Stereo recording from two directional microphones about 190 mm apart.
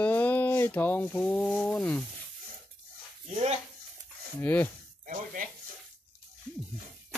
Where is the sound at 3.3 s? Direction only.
35° right (ahead or behind).